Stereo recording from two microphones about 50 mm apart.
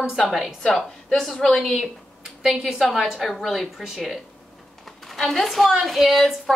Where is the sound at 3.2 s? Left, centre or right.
Centre.